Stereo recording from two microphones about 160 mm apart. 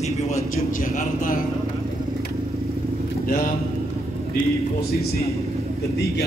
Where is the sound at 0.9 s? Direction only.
55° left (ahead or behind).